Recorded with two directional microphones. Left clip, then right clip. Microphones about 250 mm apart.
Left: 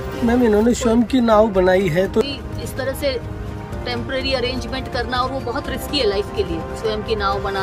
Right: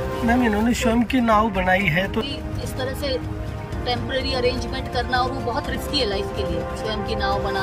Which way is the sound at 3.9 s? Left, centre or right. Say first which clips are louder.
Left 2 dB; centre.